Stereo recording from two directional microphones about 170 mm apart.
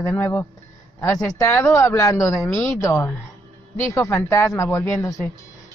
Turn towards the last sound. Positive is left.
turn(degrees=15)  # may be behind; listen again after turning